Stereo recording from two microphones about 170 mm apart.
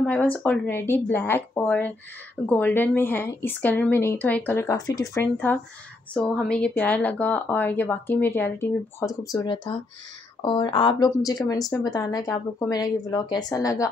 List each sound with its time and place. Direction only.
0.0 s a woman's voice: 10° left (ahead or behind)
6.1 s a woman's voice: 5° left (ahead or behind); by 13.8 s 20° left (ahead or behind)